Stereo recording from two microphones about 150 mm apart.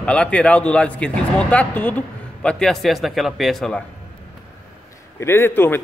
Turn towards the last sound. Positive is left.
turn(degrees=15)  # may be behind; listen again after turning